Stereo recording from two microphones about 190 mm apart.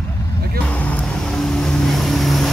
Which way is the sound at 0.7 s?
5° left (ahead or behind).